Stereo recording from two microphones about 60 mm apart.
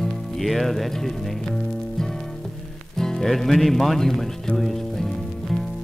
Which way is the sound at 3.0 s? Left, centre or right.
Centre.